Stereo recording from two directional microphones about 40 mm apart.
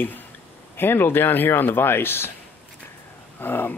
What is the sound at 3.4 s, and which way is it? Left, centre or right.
Speech, left.